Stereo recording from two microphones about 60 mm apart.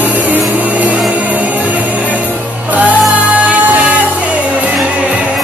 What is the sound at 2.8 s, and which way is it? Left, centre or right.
Music, right.